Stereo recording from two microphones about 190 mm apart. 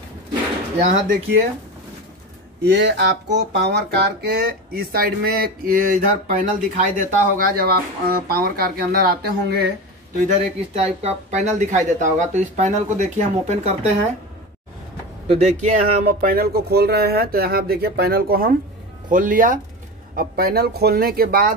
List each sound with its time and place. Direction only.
0.7 s speech: 40° right (ahead or behind)
2.6 s speech: 65° right (ahead or behind)
10.2 s speech: 35° right (ahead or behind)
15.2 s speech: 35° right (ahead or behind); by 21.5 s 50° right (ahead or behind)